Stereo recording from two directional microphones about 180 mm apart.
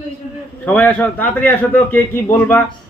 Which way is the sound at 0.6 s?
10° left (ahead or behind).